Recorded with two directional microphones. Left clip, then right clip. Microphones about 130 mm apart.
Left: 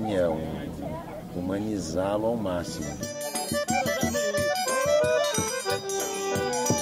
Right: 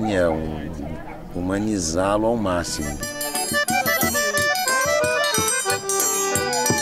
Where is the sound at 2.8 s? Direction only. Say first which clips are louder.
Right 5 dB; 25° right (ahead or behind).